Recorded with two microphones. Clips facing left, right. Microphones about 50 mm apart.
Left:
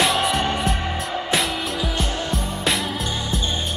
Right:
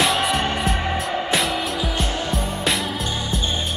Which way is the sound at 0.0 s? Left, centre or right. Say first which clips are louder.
Even; centre.